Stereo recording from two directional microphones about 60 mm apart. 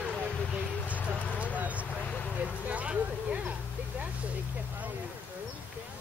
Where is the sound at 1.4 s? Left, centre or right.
Right.